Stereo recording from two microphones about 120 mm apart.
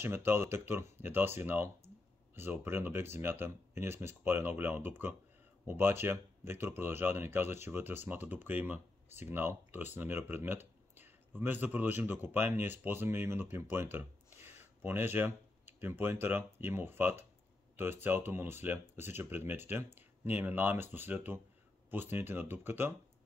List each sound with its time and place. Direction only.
0.0 s speech: 20° right (ahead or behind)